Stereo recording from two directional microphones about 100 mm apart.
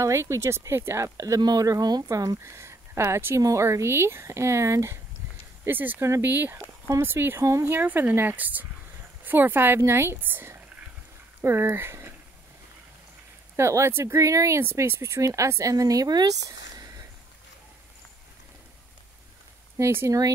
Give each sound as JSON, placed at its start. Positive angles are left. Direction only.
{"t": 0.0, "sound": "speech", "side_deg": -30}
{"t": 13.6, "sound": "speech", "side_deg": -30}
{"t": 16.4, "sound": "a sound", "side_deg": -35}
{"t": 19.8, "sound": "speech", "side_deg": -25}